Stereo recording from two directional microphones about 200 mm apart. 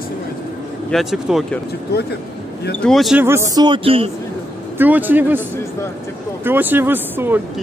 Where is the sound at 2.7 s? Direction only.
Centre (ahead or behind).